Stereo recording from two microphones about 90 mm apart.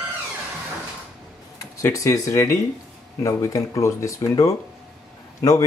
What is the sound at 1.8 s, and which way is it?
Speech, 35° left (ahead or behind).